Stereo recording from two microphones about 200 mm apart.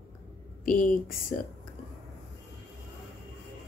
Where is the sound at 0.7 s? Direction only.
45° left (ahead or behind).